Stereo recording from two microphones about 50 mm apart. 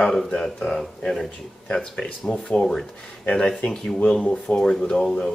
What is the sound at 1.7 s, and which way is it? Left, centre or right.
Speech, left.